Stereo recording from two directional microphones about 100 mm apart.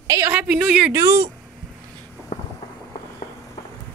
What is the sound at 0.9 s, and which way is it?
Speech, 30° right (ahead or behind).